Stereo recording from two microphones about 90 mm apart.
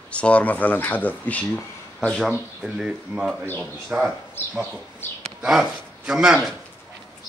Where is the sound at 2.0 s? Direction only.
Centre (ahead or behind).